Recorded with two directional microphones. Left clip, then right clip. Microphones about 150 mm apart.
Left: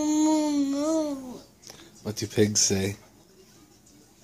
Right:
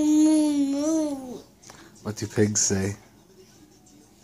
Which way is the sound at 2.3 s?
25° left (ahead or behind).